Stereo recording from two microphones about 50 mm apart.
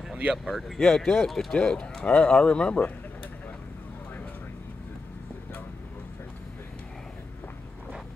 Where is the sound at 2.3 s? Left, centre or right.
Centre.